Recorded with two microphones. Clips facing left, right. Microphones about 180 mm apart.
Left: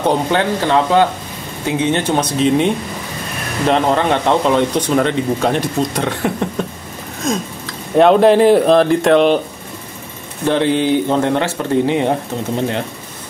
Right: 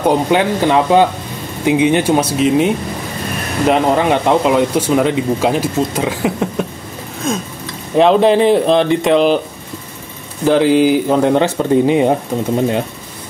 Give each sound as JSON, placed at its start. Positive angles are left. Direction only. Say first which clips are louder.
{"t": 0.0, "sound": "speech", "louder": "right 2 dB", "side_deg": -15}
{"t": 8.0, "sound": "speech", "louder": "left 1 dB", "side_deg": 0}
{"t": 10.4, "sound": "speech", "louder": "right 4 dB", "side_deg": -5}